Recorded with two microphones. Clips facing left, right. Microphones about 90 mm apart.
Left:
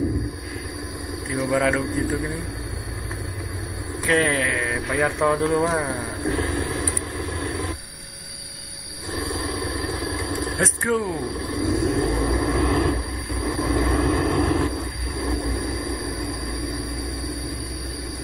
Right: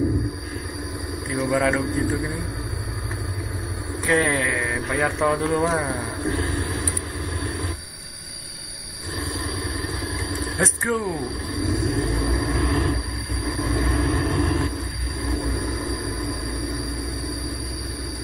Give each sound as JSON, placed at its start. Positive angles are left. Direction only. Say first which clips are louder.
{"t": 1.3, "sound": "speech", "louder": "even", "side_deg": 0}
{"t": 4.0, "sound": "speech", "louder": "even", "side_deg": -5}
{"t": 6.5, "sound": "vehicle", "louder": "left 2 dB", "side_deg": -40}
{"t": 6.8, "sound": "vehicle", "louder": "left 2 dB", "side_deg": 45}
{"t": 9.1, "sound": "a sound", "louder": "left 2 dB", "side_deg": 45}
{"t": 10.6, "sound": "speech", "louder": "even", "side_deg": 0}
{"t": 11.4, "sound": "vehicle", "louder": "left 4 dB", "side_deg": 45}